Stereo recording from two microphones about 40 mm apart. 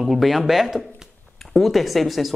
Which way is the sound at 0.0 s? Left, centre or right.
Centre.